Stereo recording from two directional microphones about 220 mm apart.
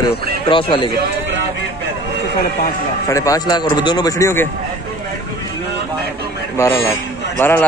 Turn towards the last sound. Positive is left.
turn(degrees=10)  # may be behind; listen again after turning